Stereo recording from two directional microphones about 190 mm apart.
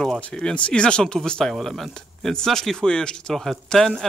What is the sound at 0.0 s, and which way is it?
Speech, 5° left (ahead or behind).